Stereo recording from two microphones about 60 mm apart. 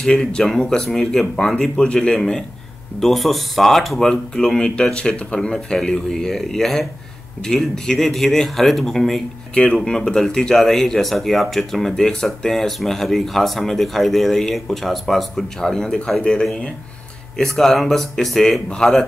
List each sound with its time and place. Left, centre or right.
0.0 s speech: centre
3.0 s speech: centre
9.5 s speech: centre